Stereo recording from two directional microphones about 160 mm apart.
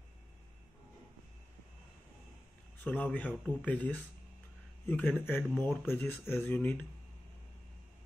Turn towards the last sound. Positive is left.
turn(degrees=10)  # may be behind; listen again after turning